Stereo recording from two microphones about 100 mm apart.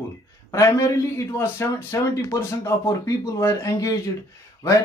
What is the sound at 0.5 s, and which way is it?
Speech, 35° left (ahead or behind).